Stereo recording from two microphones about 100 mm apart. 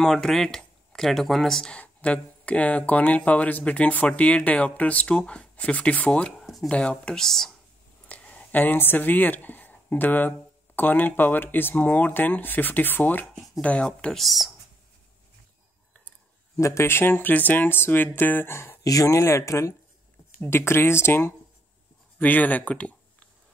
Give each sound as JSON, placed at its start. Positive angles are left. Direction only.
{"t": 0.0, "sound": "speech", "side_deg": 5}
{"t": 6.4, "sound": "a sound", "side_deg": 0}
{"t": 6.7, "sound": "speech", "side_deg": 10}
{"t": 16.5, "sound": "speech", "side_deg": 30}